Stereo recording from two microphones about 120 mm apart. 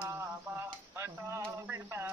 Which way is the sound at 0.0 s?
15° right (ahead or behind).